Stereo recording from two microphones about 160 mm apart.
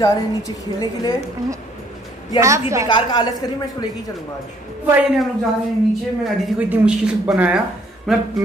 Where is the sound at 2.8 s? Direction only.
25° left (ahead or behind).